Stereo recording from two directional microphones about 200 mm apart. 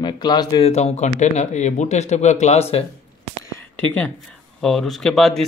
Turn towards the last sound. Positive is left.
turn(degrees=0)  # may be behind; listen again after turning